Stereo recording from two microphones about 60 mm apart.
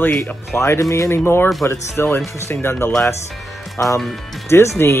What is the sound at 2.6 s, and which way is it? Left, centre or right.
Speech, left.